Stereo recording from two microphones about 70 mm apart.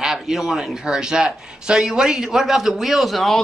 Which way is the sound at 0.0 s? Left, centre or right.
Centre.